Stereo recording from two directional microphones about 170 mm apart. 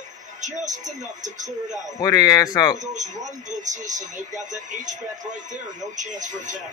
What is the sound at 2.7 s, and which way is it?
Speech, 45° right (ahead or behind).